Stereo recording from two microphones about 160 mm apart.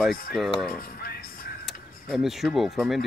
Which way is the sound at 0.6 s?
70° left (ahead or behind).